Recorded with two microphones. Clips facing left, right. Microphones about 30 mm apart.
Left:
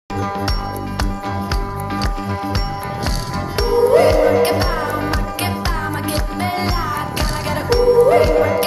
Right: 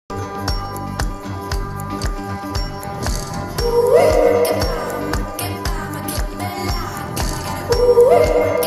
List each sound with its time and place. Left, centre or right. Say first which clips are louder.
1.9 s music: left 4 dB; left
3.5 s music: even; left